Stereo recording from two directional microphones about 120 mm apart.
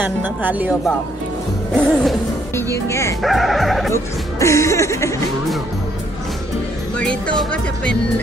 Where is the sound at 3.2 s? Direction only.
Centre (ahead or behind).